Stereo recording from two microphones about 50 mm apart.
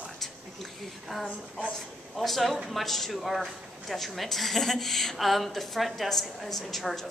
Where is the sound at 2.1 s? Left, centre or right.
Centre.